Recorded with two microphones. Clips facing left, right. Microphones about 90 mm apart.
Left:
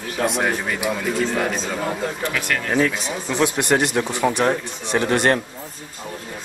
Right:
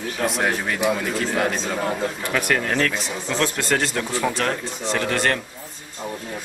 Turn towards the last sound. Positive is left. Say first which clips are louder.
# left 4 dB
turn(degrees=20)  # may be behind; listen again after turning